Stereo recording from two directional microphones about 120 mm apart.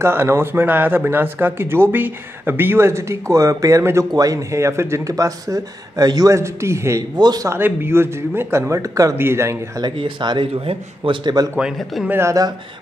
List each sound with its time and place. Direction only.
0.0 s speech: 20° right (ahead or behind)
7.2 s speech: 35° right (ahead or behind)
7.4 s speech: 20° right (ahead or behind)
9.8 s a man's voice: 40° right (ahead or behind)
12.1 s speech: 25° right (ahead or behind)